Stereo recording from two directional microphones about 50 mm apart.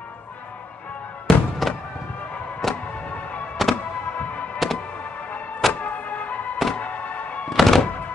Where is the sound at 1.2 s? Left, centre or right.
Centre.